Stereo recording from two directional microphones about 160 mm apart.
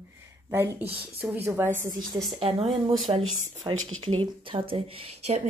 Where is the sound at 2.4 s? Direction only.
35° right (ahead or behind).